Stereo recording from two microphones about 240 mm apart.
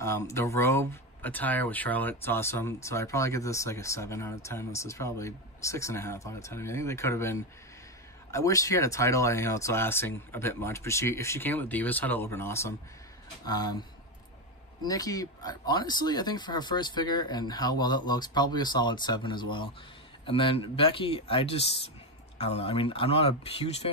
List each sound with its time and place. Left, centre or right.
0.0 s speech: centre
14.8 s speech: centre